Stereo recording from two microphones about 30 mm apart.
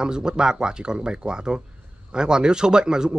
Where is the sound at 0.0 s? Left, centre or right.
Right.